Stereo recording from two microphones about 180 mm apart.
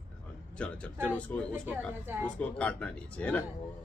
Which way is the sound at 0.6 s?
5° left (ahead or behind).